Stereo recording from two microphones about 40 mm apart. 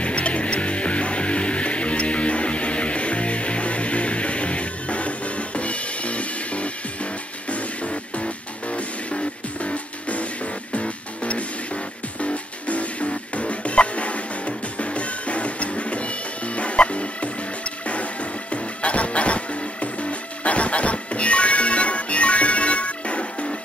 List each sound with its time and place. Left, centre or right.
0.0 s music: left